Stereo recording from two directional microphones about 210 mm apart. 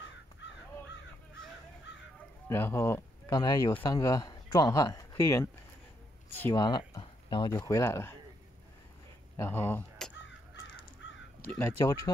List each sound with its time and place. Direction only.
1.9 s a sound: 55° left (ahead or behind)
2.4 s speech: 10° left (ahead or behind)
9.4 s speech: 10° left (ahead or behind)
11.5 s speech: 15° left (ahead or behind)